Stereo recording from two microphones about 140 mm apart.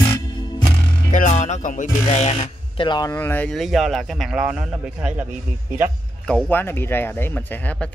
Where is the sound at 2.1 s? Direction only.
45° left (ahead or behind).